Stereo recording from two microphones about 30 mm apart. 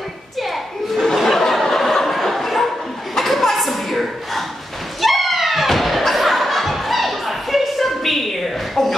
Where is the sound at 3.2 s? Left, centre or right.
Centre.